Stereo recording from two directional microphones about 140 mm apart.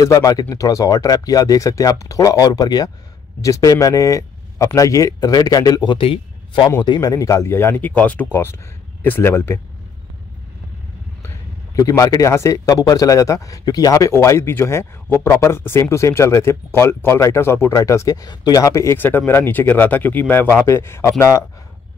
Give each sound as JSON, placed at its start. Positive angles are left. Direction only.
{"t": 0.0, "sound": "a man's voice", "side_deg": 25}
{"t": 5.9, "sound": "a man's voice", "side_deg": 40}
{"t": 6.8, "sound": "speech", "side_deg": 30}
{"t": 11.2, "sound": "a man's voice", "side_deg": 20}